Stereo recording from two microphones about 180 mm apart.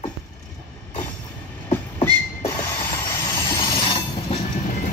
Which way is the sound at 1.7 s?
10° left (ahead or behind).